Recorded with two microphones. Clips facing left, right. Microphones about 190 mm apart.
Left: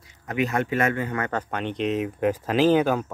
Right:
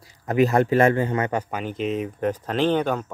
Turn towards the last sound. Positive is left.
turn(degrees=5)  # may be behind; listen again after turning